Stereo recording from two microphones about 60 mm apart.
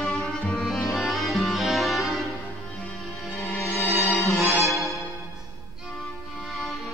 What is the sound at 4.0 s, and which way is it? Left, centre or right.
Music, centre.